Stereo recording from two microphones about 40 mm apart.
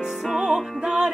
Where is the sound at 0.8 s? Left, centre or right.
Right.